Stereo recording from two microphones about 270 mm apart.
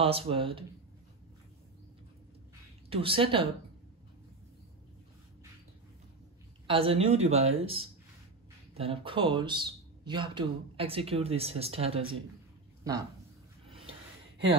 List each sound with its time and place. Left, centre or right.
0.0 s speech: right
2.9 s speech: centre
6.7 s speech: right
13.7 s snort: right